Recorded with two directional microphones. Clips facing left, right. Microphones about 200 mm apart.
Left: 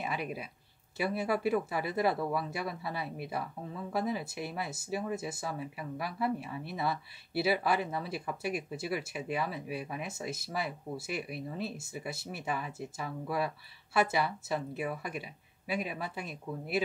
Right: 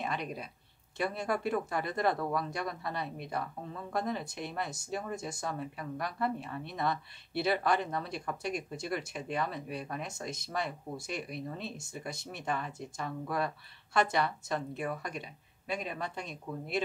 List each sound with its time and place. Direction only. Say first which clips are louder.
0.0 s speech: even; 5° left (ahead or behind)